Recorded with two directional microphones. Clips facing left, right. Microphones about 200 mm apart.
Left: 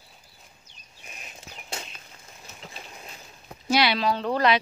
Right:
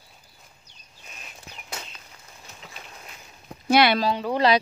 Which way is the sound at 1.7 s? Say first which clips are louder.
Left 1 dB; 30° left (ahead or behind).